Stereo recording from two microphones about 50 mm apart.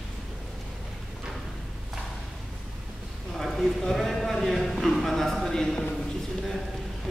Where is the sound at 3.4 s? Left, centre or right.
Centre.